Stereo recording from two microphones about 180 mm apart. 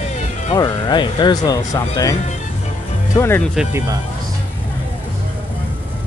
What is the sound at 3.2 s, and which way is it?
Speech, 10° left (ahead or behind).